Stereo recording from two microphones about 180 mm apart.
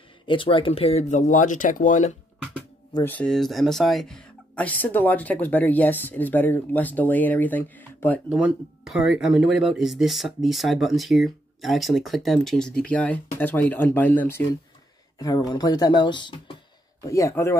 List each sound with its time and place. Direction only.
0.3 s speech: 30° left (ahead or behind); by 2.1 s 45° left (ahead or behind)
2.9 s speech: 10° left (ahead or behind)
8.3 s speech: 5° right (ahead or behind); by 17.6 s 15° left (ahead or behind)